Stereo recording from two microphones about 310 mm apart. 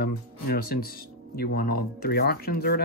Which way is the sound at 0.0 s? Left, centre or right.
Left.